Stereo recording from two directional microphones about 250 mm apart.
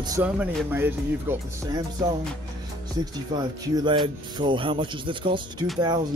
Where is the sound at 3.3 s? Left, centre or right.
Centre.